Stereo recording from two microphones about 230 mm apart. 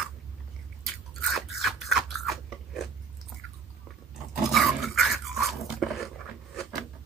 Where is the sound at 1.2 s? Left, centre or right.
Centre.